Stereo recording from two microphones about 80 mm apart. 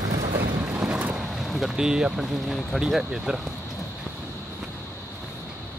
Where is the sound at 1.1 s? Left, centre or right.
Centre.